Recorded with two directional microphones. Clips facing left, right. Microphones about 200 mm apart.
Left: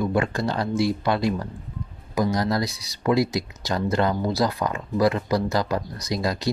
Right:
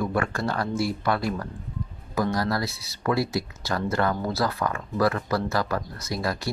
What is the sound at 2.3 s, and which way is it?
Speech, 20° left (ahead or behind).